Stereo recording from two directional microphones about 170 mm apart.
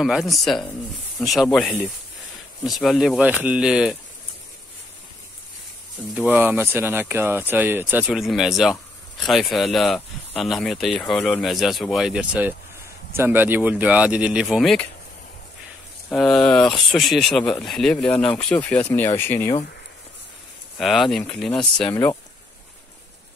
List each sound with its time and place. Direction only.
0.0 s speech: centre (ahead or behind)
6.1 s speech: 10° right (ahead or behind)
16.1 s speech: 5° left (ahead or behind)
20.7 s speech: centre (ahead or behind)
21.9 s speech: 15° left (ahead or behind)